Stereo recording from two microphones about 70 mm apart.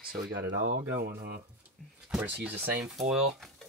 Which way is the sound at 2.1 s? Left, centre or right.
Right.